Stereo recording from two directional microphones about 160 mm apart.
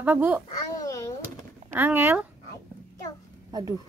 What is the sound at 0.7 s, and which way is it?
Door, 20° left (ahead or behind).